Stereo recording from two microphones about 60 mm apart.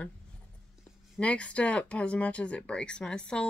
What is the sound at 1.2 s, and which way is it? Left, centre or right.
Speech, left.